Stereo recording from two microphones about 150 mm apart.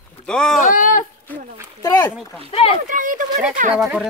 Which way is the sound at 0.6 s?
60° left (ahead or behind).